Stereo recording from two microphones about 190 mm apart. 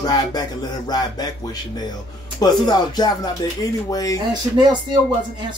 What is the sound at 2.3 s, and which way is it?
Speech, 20° left (ahead or behind).